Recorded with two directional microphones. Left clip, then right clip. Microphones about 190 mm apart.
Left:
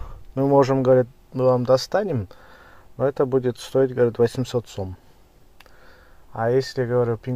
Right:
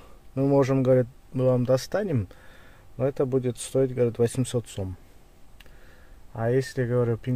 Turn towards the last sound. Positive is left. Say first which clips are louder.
# left 4 dB
turn(degrees=-20)  # may be behind; listen again after turning